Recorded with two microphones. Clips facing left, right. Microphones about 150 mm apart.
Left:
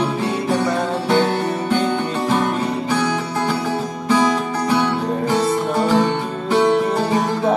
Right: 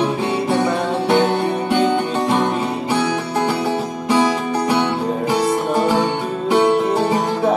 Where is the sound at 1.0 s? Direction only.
15° right (ahead or behind).